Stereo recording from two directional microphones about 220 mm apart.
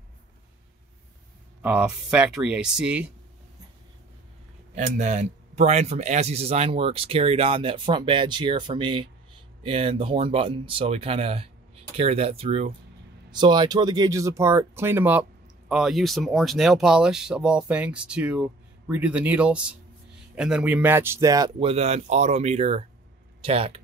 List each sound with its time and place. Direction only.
1.6 s speech: 5° right (ahead or behind)
4.7 s speech: 35° right (ahead or behind)